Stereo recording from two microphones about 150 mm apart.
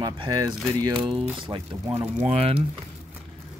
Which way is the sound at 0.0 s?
25° right (ahead or behind).